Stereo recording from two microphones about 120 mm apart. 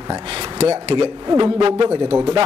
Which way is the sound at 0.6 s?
55° right (ahead or behind).